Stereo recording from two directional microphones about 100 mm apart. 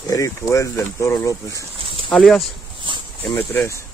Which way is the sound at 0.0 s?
35° left (ahead or behind).